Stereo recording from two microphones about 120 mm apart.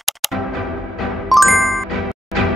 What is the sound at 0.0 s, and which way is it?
Music, centre (ahead or behind).